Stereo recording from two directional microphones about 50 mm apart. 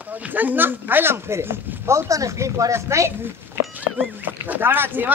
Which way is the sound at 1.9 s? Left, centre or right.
Right.